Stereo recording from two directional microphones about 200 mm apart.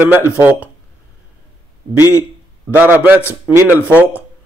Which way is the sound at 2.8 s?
10° right (ahead or behind).